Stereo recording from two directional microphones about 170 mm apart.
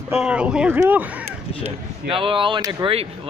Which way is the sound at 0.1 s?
5° right (ahead or behind).